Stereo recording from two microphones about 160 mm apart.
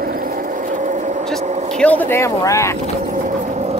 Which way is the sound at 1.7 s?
10° left (ahead or behind).